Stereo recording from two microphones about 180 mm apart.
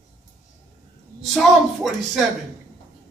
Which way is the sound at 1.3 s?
Centre (ahead or behind).